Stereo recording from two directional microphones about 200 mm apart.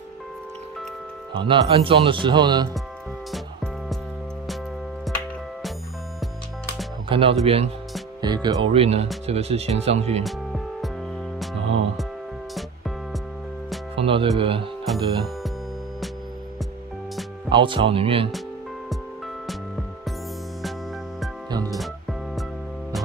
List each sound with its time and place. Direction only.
1.3 s speech: 25° right (ahead or behind)
3.3 s music: centre (ahead or behind)
5.1 s music: centre (ahead or behind)
7.1 s speech: 25° right (ahead or behind)
10.2 s music: centre (ahead or behind)
13.9 s speech: 25° right (ahead or behind)
14.9 s music: centre (ahead or behind)
17.5 s speech: 25° right (ahead or behind)
21.6 s music: centre (ahead or behind)